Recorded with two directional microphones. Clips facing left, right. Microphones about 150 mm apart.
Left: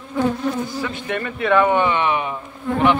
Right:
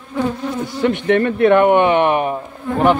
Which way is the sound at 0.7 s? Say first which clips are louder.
Right 10 dB; 70° right (ahead or behind).